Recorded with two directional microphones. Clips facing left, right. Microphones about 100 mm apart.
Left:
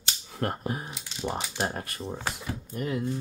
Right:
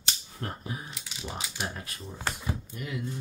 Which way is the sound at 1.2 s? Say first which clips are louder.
Left 6 dB; 45° left (ahead or behind).